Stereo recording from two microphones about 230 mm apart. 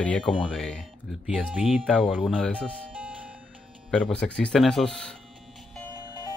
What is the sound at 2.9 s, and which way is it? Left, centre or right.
Music, centre.